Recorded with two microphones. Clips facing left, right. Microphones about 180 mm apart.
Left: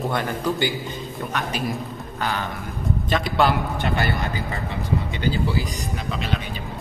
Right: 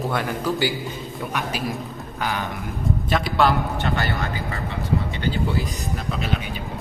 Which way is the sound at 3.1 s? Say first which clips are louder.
Even; 5° right (ahead or behind).